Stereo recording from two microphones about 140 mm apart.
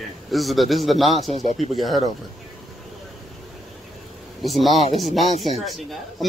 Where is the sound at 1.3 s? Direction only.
50° right (ahead or behind).